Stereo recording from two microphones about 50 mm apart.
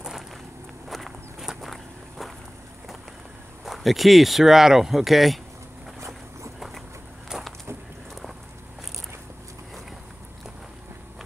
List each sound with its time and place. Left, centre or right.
0.8 s walk: centre
1.4 s walk: centre
1.7 s walk: centre
3.6 s speech: centre
5.9 s boat: right
7.3 s a sound: centre